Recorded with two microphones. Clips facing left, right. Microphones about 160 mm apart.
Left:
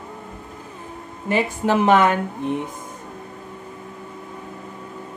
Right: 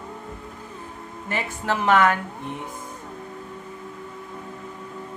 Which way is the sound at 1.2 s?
15° left (ahead or behind).